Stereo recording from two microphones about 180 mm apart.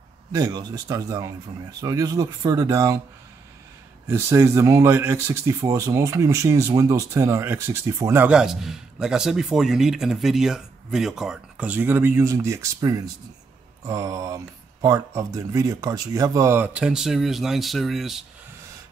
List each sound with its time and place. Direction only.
0.3 s speech: 20° right (ahead or behind)
4.1 s speech: 15° right (ahead or behind)